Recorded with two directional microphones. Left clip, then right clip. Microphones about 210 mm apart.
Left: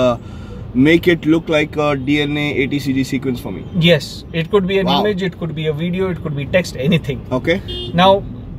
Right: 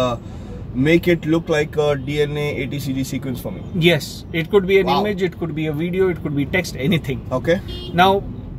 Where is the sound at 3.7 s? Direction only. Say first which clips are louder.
Left 3 dB; 15° right (ahead or behind).